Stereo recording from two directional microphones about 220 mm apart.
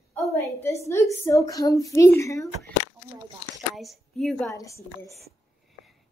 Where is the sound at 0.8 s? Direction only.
10° left (ahead or behind).